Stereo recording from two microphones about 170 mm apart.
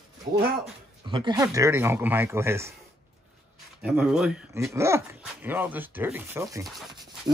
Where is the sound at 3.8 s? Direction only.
5° right (ahead or behind).